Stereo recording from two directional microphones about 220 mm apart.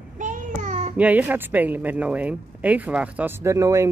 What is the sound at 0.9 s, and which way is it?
Speech, 5° right (ahead or behind).